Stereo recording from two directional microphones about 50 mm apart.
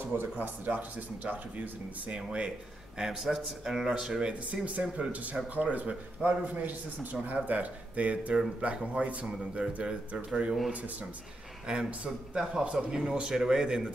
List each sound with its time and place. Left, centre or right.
0.4 s a man's voice: right
2.1 s speech: right
3.0 s a man's voice: centre
11.6 s speech: centre